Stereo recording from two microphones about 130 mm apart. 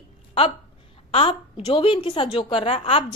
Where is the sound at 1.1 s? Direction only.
45° left (ahead or behind).